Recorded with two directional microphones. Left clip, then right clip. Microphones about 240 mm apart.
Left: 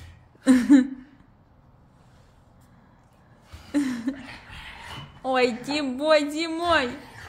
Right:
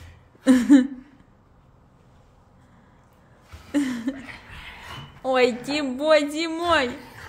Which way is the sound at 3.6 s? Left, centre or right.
Centre.